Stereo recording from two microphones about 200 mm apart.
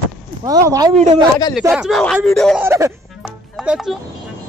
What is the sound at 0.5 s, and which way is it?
Speech, 15° right (ahead or behind).